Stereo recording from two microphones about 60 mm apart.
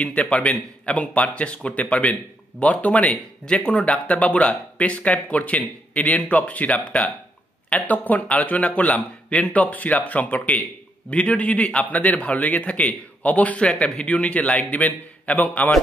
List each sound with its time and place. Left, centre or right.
0.0 s speech: left